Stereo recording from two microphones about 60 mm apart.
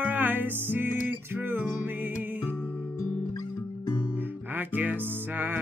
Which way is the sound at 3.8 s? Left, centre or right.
Left.